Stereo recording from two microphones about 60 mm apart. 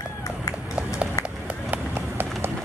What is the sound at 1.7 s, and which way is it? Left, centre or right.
Run, right.